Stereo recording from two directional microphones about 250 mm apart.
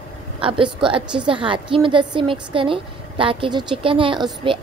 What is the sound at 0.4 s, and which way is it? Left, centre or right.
A woman's voice, centre.